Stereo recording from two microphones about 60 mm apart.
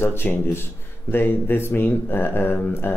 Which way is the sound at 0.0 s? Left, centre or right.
Left.